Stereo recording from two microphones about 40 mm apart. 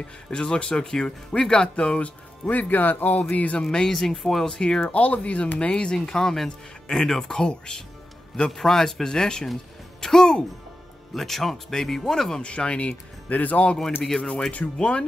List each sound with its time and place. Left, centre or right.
0.3 s speech: left
3.3 s speech: left
3.7 s speech: centre
4.6 s speech: centre
4.8 s speech: left; by 7.8 s centre
8.5 s speech: centre
12.4 s speech: left
13.3 s speech: left
14.5 s speech: left